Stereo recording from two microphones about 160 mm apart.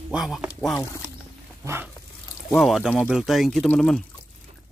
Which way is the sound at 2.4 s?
Centre (ahead or behind).